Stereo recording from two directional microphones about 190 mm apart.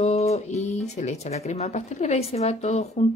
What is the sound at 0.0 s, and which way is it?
Speech, 35° left (ahead or behind).